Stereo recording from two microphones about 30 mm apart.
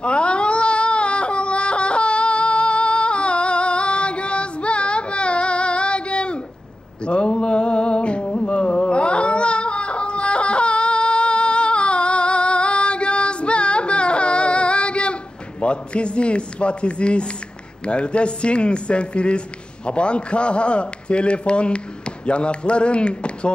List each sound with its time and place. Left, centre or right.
0.0 s baby cry: left
7.1 s a sound: left
15.6 s speech: left